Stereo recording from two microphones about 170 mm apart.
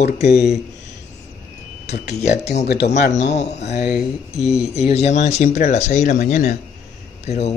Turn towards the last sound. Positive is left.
turn(degrees=40)  # may be behind; listen again after turning